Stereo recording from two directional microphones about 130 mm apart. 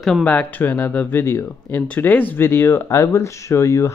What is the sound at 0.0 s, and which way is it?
Speech, 5° left (ahead or behind).